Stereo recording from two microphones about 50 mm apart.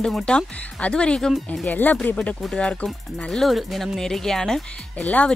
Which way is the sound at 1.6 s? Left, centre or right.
Left.